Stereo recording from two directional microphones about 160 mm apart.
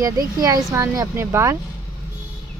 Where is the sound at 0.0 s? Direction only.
20° right (ahead or behind).